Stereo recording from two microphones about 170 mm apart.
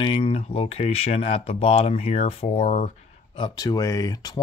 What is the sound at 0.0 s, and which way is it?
Speech, 30° left (ahead or behind).